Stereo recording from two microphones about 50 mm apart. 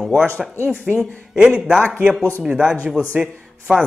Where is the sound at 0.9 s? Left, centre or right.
Right.